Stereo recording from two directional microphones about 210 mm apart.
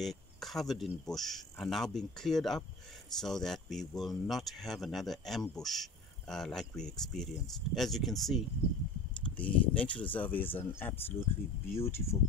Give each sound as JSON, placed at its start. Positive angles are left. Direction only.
{"t": 0.0, "sound": "speech", "side_deg": 0}
{"t": 11.7, "sound": "speech", "side_deg": 30}